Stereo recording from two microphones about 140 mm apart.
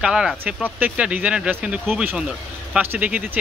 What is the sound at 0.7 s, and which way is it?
A man's voice, 10° right (ahead or behind).